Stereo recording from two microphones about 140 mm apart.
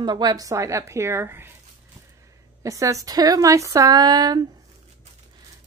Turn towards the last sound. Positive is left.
turn(degrees=-30)  # may be behind; listen again after turning